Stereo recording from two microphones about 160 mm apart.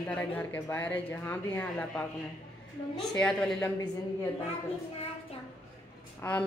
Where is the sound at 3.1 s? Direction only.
5° left (ahead or behind).